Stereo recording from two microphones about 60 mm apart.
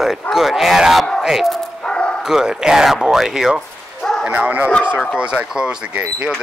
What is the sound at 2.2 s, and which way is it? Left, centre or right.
Speech, centre.